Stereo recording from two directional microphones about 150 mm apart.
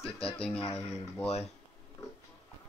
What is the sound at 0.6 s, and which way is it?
Speech, 40° left (ahead or behind).